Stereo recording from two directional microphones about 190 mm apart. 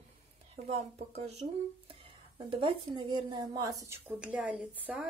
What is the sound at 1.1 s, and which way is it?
A woman's voice, 35° right (ahead or behind).